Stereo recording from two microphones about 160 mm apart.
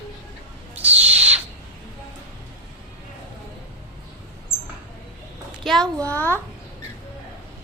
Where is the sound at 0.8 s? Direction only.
40° right (ahead or behind).